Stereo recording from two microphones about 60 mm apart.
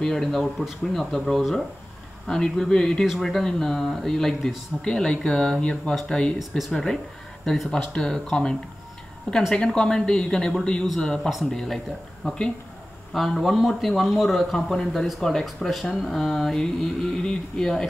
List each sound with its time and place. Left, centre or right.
0.0 s speech: centre
7.7 s speech: centre